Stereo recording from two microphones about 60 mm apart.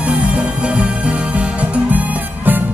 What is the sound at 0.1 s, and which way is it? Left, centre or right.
Music, centre.